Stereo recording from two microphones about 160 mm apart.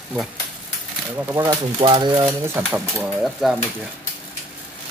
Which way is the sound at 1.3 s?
25° right (ahead or behind).